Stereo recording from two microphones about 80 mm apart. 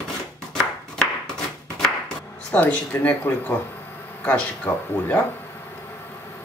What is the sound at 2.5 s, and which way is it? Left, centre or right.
Speech, left.